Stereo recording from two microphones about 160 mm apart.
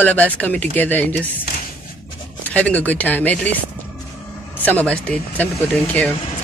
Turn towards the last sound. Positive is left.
turn(degrees=10)  # may be behind; listen again after turning